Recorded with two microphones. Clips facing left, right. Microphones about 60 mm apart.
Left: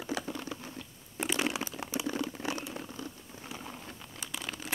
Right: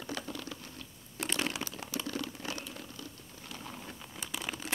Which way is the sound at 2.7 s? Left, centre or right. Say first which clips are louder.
Left 5 dB; left.